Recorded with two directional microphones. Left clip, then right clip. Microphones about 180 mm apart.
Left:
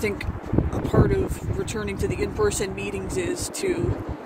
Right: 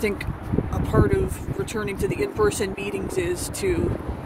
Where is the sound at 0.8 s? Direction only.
15° right (ahead or behind).